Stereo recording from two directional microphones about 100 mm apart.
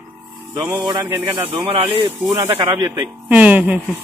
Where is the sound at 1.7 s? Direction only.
60° right (ahead or behind).